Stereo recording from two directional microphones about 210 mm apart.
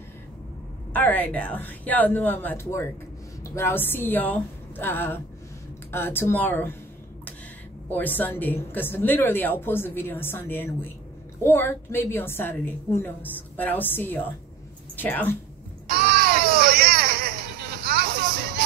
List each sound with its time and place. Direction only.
0.9 s a woman's voice: 10° left (ahead or behind)
7.9 s a woman's voice: 10° left (ahead or behind)
15.9 s baby cry: 45° right (ahead or behind)